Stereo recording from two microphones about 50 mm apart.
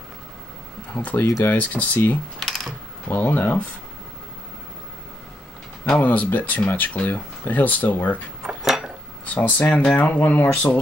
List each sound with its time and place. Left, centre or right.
1.1 s speech: left
5.9 s speech: left
8.4 s dishes: centre
9.2 s speech: left